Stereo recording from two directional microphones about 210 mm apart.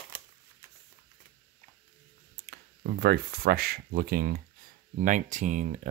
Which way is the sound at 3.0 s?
50° right (ahead or behind).